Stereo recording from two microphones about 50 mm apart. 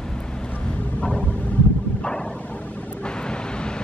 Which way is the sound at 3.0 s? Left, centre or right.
Centre.